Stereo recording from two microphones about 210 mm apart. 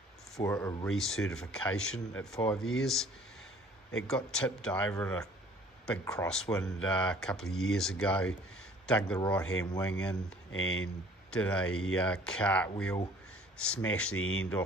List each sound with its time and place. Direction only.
0.4 s speech: 15° left (ahead or behind)
0.8 s speech: centre (ahead or behind)
6.6 s speech: 5° left (ahead or behind)
9.6 s a man's voice: 20° left (ahead or behind)
9.8 s speech: 5° left (ahead or behind)
10.5 s speech: 70° left (ahead or behind)
11.2 s speech: 5° left (ahead or behind)
14.1 s speech: 75° left (ahead or behind)